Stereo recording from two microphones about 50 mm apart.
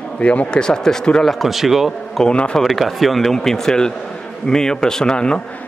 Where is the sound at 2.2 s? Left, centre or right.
Left.